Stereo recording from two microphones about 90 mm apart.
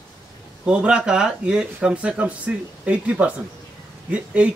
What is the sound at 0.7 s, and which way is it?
Speech, 10° right (ahead or behind).